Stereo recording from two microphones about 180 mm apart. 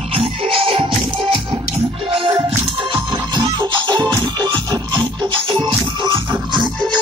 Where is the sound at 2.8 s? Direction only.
25° right (ahead or behind).